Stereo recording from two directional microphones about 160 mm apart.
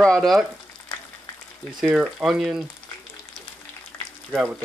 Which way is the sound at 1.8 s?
5° right (ahead or behind).